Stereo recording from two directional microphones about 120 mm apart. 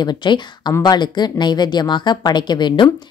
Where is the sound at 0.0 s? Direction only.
40° left (ahead or behind).